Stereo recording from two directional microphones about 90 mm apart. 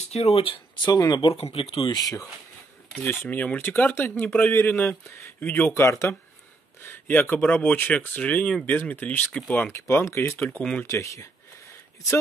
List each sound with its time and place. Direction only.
0.3 s speech: 85° left; by 1.3 s 50° left (ahead or behind)
1.3 s speech: 90° left
2.0 s speech: 45° left (ahead or behind)
3.3 s speech: 20° left (ahead or behind)
5.7 s speech: 30° left (ahead or behind)
9.7 s speech: 30° left (ahead or behind)
10.6 s speech: 10° left (ahead or behind)
10.9 s speech: 35° left (ahead or behind)